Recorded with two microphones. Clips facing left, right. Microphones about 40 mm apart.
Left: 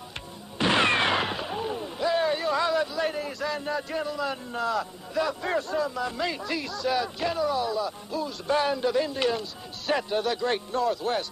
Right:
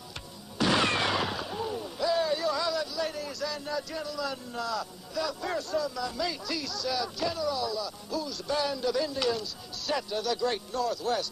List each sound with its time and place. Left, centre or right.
0.6 s speech: left